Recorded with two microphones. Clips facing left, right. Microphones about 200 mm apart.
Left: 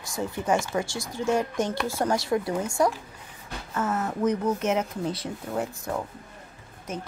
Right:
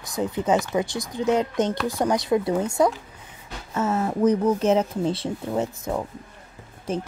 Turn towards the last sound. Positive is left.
turn(degrees=-30)  # may be behind; listen again after turning